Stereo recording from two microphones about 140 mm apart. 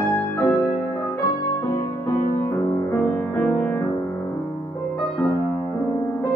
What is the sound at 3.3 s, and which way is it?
Music, 10° left (ahead or behind).